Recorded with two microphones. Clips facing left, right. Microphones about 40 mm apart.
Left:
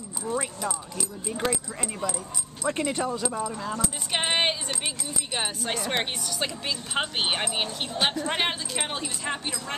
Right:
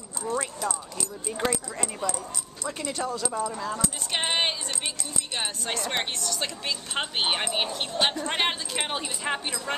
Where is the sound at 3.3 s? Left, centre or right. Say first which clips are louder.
Right 1 dB; centre.